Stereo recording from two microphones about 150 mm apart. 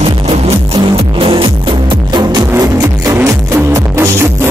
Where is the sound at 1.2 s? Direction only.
35° right (ahead or behind).